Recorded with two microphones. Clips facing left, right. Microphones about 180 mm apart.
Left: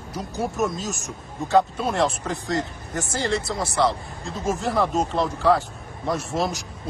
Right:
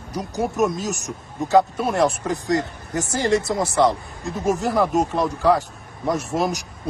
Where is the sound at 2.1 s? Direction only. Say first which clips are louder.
Right 4 dB; 20° right (ahead or behind).